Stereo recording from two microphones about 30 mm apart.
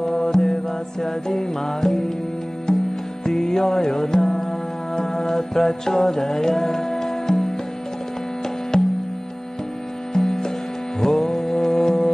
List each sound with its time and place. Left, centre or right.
0.0 s music: centre
3.3 s music: centre
8.7 s music: left
10.1 s music: centre